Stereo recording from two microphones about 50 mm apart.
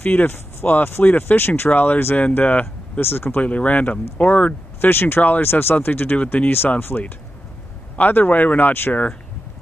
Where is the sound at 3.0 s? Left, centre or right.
Left.